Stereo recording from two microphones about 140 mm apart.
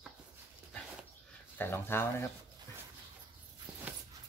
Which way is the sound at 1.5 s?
15° left (ahead or behind).